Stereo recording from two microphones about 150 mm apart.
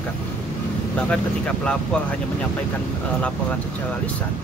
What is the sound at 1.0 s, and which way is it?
Speech, 5° left (ahead or behind).